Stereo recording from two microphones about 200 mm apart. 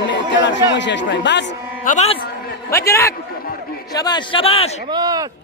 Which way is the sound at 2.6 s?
15° left (ahead or behind).